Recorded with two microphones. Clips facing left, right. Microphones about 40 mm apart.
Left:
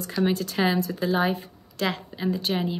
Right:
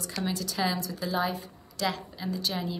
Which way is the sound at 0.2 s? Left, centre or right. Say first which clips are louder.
Left 7 dB; left.